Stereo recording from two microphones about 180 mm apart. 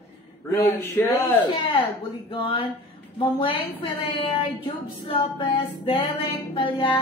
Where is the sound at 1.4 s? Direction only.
25° left (ahead or behind).